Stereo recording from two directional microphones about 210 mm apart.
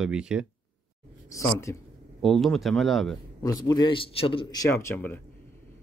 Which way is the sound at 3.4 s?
20° left (ahead or behind).